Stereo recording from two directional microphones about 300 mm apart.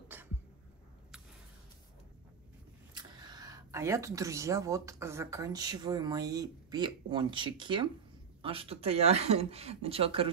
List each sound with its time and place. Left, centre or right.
2.9 s speech: centre